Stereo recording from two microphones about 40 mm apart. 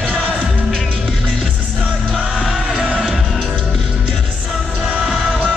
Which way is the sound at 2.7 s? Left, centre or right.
Right.